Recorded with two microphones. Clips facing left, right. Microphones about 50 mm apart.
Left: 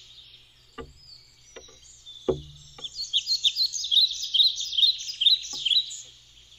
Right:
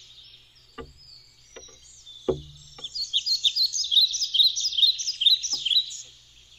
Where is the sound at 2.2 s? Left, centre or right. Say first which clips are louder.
Even; centre.